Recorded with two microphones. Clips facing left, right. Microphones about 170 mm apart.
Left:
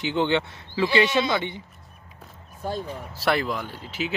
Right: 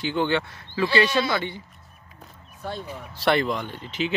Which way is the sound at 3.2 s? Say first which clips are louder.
Right 2 dB; 5° left (ahead or behind).